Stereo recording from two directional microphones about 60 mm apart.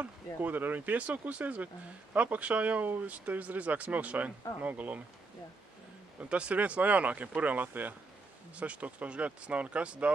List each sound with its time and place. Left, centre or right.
0.0 s speech: right
6.2 s speech: centre